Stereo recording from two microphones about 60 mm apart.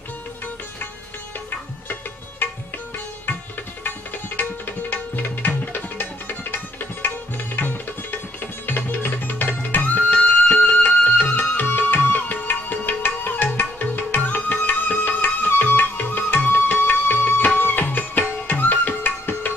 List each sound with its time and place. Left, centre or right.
2.4 s music: left
4.4 s tabla: left
8.6 s music: left